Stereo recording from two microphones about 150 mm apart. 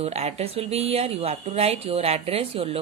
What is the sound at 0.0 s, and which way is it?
A woman's voice, 45° right (ahead or behind).